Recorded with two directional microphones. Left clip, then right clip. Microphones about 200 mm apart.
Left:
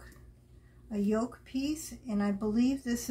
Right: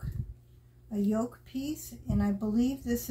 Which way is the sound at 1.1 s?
10° left (ahead or behind).